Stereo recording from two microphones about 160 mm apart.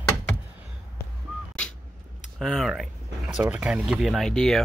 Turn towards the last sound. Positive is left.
turn(degrees=5)  # may be behind; listen again after turning